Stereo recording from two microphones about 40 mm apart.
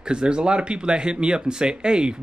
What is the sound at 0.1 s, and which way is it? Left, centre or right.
Speech, right.